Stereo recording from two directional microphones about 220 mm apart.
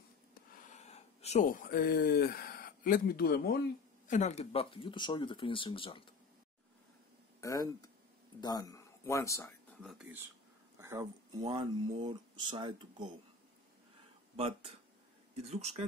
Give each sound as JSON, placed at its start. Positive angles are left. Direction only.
{"t": 0.6, "sound": "speech", "side_deg": 30}
{"t": 4.1, "sound": "speech", "side_deg": 30}
{"t": 7.3, "sound": "speech", "side_deg": 15}
{"t": 9.8, "sound": "speech", "side_deg": 0}
{"t": 10.8, "sound": "speech", "side_deg": -15}
{"t": 14.3, "sound": "speech", "side_deg": -25}